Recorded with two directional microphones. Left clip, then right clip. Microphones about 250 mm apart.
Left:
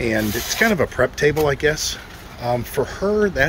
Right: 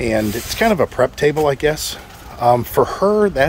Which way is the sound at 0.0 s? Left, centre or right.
Centre.